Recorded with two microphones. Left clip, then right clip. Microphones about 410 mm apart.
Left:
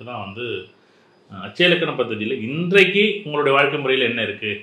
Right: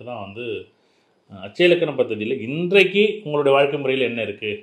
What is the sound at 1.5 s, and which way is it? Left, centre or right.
A man's voice, right.